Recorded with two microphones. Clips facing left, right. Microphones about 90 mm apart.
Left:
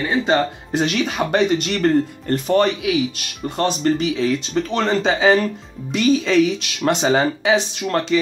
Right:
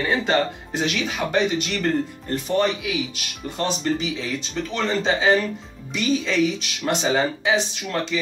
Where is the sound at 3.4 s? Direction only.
60° left (ahead or behind).